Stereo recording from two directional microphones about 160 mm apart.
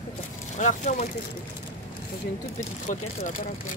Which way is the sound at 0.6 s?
50° left (ahead or behind).